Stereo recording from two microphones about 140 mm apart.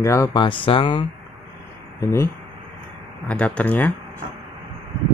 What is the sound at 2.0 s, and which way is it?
Speech, 20° left (ahead or behind).